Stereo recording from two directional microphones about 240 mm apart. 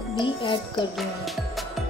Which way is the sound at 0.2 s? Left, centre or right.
Left.